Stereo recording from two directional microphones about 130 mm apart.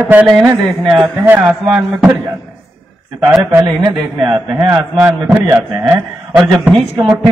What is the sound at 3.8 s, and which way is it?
A man's voice, 35° right (ahead or behind).